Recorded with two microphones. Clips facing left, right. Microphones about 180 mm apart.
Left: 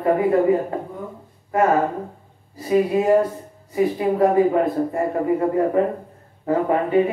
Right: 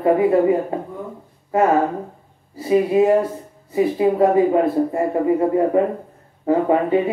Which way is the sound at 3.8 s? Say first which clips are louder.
Right 2 dB; 20° right (ahead or behind).